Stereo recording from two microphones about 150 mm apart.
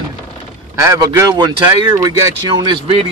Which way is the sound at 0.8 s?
20° right (ahead or behind).